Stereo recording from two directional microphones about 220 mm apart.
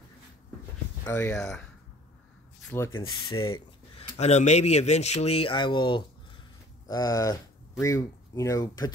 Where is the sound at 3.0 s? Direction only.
20° left (ahead or behind).